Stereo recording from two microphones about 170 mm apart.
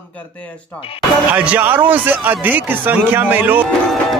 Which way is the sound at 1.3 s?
10° right (ahead or behind).